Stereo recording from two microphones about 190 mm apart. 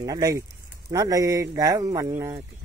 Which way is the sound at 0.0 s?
20° right (ahead or behind).